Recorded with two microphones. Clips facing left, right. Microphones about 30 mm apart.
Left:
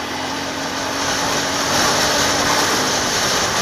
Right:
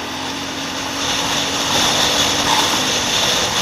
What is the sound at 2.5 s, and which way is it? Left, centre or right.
Vehicle, right.